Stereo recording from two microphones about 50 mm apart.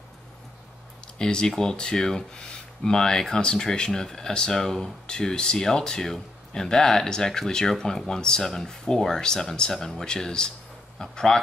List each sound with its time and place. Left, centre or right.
1.0 s speech: centre